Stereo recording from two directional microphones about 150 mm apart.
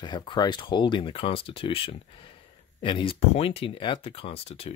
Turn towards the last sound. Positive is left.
turn(degrees=40)  # may be behind; listen again after turning